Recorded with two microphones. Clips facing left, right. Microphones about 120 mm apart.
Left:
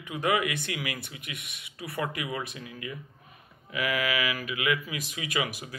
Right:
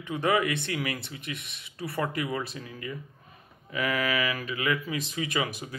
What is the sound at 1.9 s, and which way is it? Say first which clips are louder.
Mantra: right 2 dB; 15° left (ahead or behind).